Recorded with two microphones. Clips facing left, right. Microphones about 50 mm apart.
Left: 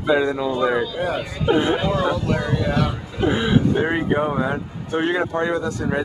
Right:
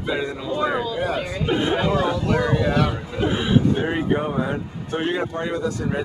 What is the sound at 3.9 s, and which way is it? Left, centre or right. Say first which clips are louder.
Speech: left 2 dB; centre.